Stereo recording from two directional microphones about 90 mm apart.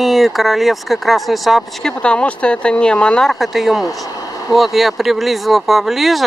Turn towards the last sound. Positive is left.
turn(degrees=0)  # may be behind; listen again after turning